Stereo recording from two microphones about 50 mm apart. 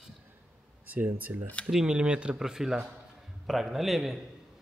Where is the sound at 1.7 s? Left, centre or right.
Centre.